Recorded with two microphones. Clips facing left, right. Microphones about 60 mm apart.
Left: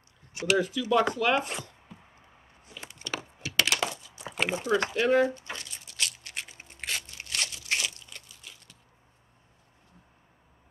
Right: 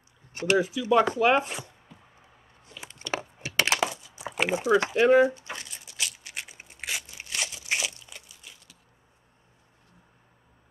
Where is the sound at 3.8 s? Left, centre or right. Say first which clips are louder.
Right 3 dB; centre.